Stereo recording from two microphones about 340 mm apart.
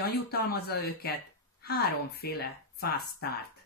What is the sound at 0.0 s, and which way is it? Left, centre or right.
Speech, left.